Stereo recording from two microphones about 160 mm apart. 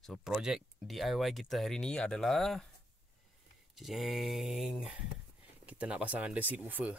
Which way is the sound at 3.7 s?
Centre (ahead or behind).